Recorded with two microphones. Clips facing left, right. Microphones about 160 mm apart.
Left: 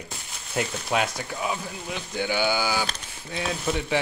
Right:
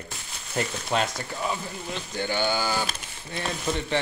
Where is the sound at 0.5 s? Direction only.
5° left (ahead or behind).